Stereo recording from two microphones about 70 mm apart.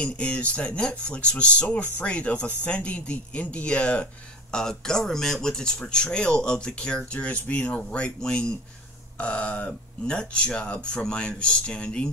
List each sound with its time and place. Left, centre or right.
0.0 s speech: centre